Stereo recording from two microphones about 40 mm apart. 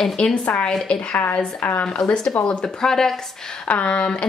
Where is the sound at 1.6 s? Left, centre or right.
Left.